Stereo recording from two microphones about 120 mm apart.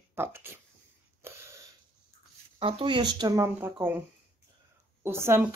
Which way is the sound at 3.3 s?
20° right (ahead or behind).